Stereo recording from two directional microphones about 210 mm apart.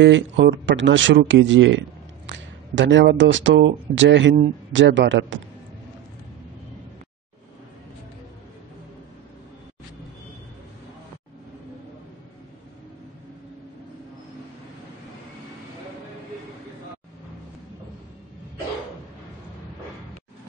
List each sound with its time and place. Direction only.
0.0 s speech: 55° right (ahead or behind)